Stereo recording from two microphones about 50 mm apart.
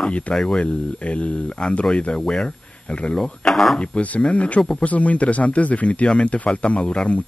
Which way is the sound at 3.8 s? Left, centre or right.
Left.